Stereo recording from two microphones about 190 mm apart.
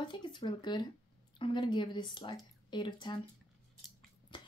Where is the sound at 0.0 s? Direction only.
25° left (ahead or behind).